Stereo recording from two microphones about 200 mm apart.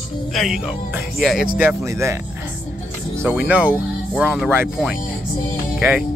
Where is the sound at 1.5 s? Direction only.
10° right (ahead or behind).